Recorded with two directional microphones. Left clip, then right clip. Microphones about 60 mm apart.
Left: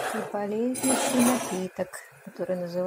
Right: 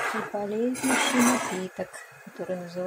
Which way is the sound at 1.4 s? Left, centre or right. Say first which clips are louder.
Even; centre.